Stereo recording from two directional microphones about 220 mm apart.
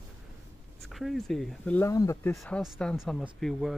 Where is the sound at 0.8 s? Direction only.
Centre (ahead or behind).